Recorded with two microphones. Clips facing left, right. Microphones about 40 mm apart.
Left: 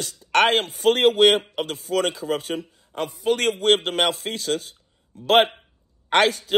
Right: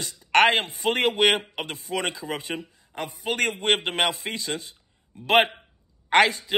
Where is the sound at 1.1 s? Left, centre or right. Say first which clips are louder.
Left 4 dB; centre.